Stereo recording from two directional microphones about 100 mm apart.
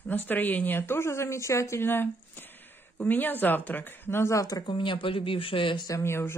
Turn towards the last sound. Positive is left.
turn(degrees=25)  # may be behind; listen again after turning